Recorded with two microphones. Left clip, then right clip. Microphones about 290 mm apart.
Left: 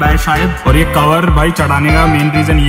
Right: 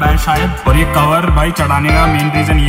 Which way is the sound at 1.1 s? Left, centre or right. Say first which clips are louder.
Left 2 dB; left.